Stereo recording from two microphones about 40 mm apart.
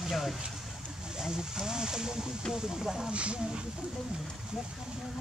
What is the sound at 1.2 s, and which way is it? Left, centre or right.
Speech, centre.